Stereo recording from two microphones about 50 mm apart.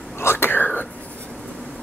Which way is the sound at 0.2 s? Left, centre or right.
Left.